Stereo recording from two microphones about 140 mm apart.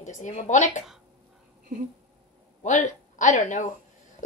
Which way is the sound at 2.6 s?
60° left (ahead or behind).